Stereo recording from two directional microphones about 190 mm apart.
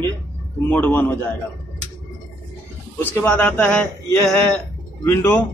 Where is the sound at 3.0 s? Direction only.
10° left (ahead or behind).